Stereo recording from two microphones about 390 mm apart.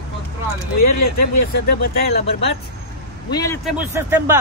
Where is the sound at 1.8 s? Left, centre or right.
Left.